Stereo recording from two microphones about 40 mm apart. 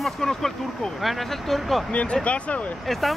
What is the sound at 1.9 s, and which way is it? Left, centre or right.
Speech, left.